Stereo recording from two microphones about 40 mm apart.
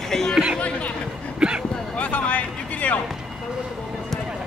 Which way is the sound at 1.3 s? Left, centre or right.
Right.